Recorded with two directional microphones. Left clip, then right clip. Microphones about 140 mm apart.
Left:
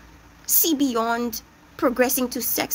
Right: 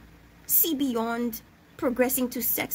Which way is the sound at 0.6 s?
20° right (ahead or behind).